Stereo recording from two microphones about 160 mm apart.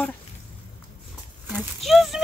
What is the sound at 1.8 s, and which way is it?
Speech, centre (ahead or behind).